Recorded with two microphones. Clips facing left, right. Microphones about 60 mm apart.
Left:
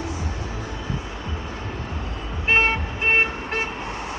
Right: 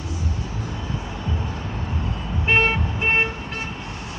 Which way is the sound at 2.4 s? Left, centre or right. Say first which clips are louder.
Even; centre.